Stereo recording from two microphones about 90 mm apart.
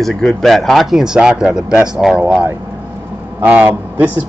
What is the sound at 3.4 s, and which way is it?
Speech, 20° right (ahead or behind).